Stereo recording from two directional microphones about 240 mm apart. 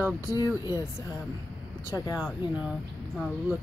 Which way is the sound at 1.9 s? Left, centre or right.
Centre.